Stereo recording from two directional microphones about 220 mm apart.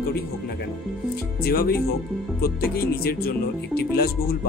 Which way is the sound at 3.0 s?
45° left (ahead or behind).